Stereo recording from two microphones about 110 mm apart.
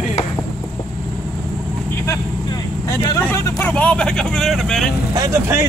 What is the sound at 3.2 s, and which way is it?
Vehicle, 20° left (ahead or behind).